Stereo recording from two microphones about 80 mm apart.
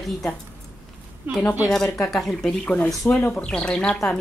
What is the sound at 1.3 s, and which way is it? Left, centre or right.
Speech, right.